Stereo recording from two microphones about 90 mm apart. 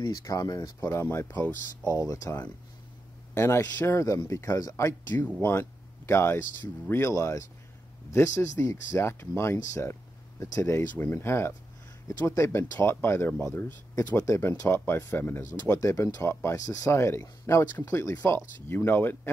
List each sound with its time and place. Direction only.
0.1 s speech: 40° left (ahead or behind); by 1.5 s 20° left (ahead or behind)
1.9 s speech: 35° left (ahead or behind)
3.3 s speech: 30° left (ahead or behind)